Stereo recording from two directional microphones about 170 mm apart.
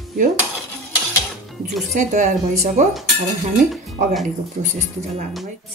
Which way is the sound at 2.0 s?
45° right (ahead or behind).